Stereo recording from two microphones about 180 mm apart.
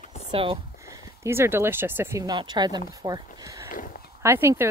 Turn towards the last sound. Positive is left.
turn(degrees=-15)  # may be behind; listen again after turning